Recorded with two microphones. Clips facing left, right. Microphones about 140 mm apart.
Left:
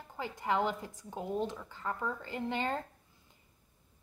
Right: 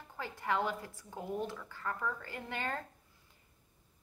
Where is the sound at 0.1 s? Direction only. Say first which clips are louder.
Left 2 dB; 15° left (ahead or behind).